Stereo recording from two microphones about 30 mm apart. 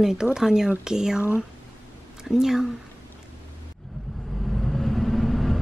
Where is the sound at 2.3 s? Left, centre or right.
Centre.